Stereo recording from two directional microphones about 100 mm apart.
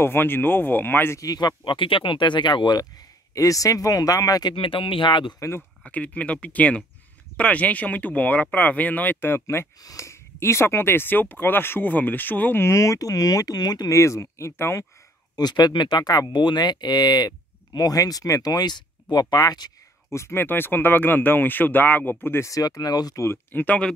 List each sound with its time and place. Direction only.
0.0 s speech: 20° left (ahead or behind)
1.2 s speech: 40° left (ahead or behind)
1.6 s speech: 55° left (ahead or behind)
3.3 s speech: 35° left (ahead or behind)
4.6 s speech: 60° left (ahead or behind)
5.9 s speech: 15° left (ahead or behind)
15.3 s speech: 45° left (ahead or behind)
20.1 s speech: 25° left (ahead or behind)
23.2 s speech: 20° left (ahead or behind)